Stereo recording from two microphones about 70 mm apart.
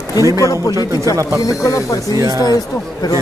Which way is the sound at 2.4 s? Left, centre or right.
Left.